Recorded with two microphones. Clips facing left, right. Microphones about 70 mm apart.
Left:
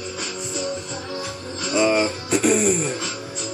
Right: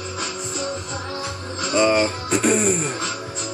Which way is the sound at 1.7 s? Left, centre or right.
Centre.